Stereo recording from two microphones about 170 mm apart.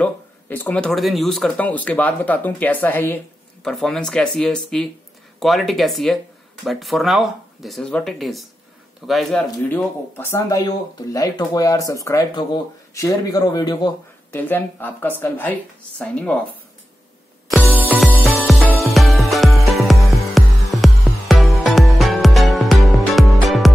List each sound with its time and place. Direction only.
0.0 s speech: 10° left (ahead or behind)
14.3 s speech: 10° left (ahead or behind)
17.7 s music: 10° right (ahead or behind)
18.2 s music: centre (ahead or behind)